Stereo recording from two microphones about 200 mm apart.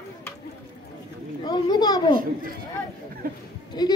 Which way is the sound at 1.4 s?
20° left (ahead or behind).